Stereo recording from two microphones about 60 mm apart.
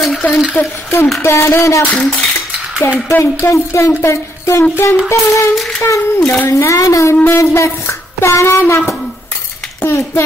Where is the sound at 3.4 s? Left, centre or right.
Left.